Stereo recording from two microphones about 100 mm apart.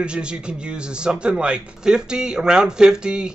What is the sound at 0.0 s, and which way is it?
Speech, 10° right (ahead or behind).